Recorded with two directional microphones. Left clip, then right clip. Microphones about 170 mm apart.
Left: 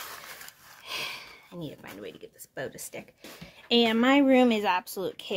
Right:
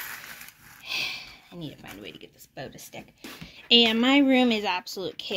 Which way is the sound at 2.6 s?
20° left (ahead or behind).